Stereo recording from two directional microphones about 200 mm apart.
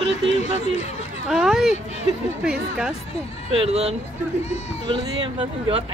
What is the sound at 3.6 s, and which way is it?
Speech, 30° right (ahead or behind).